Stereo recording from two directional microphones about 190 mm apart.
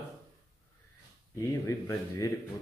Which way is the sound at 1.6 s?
15° left (ahead or behind).